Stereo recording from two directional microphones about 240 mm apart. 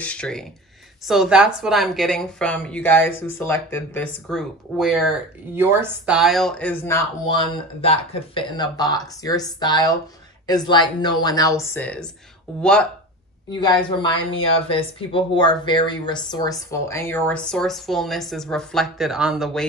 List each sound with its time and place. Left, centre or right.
0.0 s speech: centre
13.5 s speech: centre